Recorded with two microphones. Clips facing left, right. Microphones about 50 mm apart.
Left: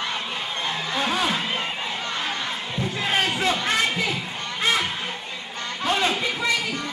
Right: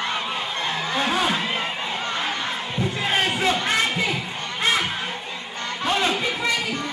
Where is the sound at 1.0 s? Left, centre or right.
Centre.